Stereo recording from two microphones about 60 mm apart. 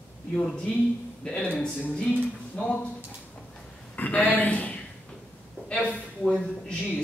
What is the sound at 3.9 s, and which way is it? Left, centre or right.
Speech, left.